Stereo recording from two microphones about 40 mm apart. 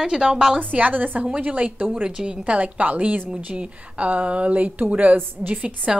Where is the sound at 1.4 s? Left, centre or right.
Right.